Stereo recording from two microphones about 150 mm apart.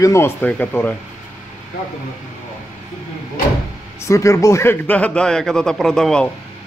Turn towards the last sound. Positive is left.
turn(degrees=5)  # may be behind; listen again after turning